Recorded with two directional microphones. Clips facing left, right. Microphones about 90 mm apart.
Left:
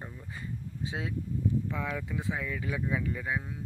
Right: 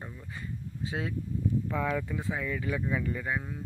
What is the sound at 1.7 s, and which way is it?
Speech, centre (ahead or behind).